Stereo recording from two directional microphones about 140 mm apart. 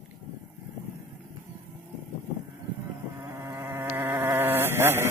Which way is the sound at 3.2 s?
20° right (ahead or behind).